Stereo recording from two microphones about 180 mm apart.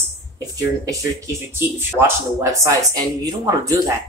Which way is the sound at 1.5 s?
10° right (ahead or behind).